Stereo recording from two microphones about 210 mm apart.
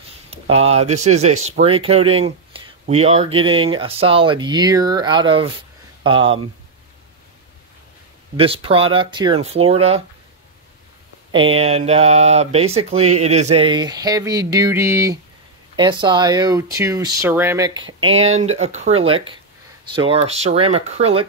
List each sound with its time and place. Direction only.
0.3 s speech: 30° right (ahead or behind)
8.4 s speech: 25° right (ahead or behind)
11.3 s speech: 25° right (ahead or behind)
17.8 s speech: 70° right (ahead or behind)
18.4 s speech: 30° right (ahead or behind)